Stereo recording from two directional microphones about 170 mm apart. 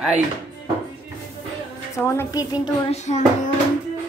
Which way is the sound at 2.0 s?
20° left (ahead or behind).